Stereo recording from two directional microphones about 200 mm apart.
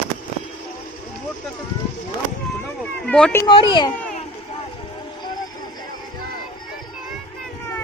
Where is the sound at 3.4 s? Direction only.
25° left (ahead or behind).